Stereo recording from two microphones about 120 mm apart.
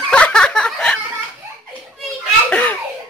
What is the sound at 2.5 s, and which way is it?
Giggle, 10° left (ahead or behind).